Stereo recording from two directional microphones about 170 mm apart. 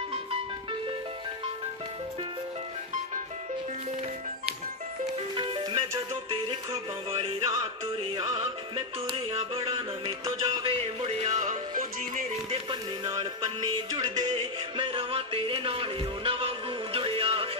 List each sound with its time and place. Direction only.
5.3 s music: 25° right (ahead or behind)
7.1 s music: 35° right (ahead or behind)
13.0 s music: 25° right (ahead or behind)